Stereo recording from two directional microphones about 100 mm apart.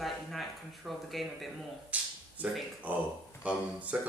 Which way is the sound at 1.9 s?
15° right (ahead or behind).